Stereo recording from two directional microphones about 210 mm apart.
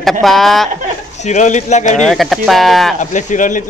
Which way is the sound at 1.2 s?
35° left (ahead or behind).